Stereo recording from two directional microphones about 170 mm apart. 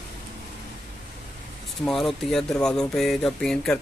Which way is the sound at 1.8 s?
Centre (ahead or behind).